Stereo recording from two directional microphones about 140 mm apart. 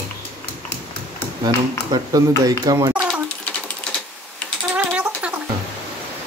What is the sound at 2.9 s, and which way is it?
Typewriter, 15° right (ahead or behind).